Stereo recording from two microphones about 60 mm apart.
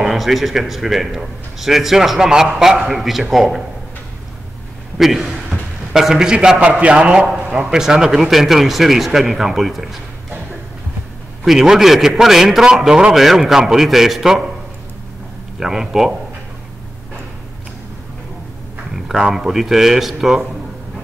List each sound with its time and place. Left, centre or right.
0.0 s a man's voice: centre
4.9 s a man's voice: centre
6.6 s a man's voice: right; by 10.4 s centre
11.4 s a man's voice: centre
15.6 s a man's voice: centre
18.9 s a man's voice: centre